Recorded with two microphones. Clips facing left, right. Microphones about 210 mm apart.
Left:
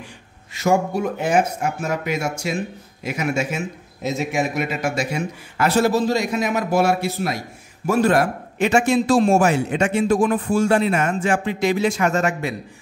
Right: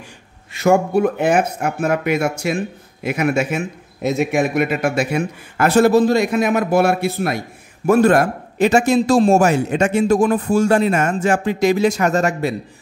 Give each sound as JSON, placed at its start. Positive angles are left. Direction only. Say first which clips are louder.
{"t": 0.5, "sound": "a man's voice", "louder": "right 4 dB", "side_deg": -60}